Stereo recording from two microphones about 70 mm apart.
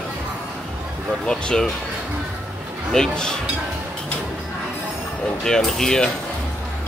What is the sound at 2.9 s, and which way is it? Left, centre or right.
Speech, centre.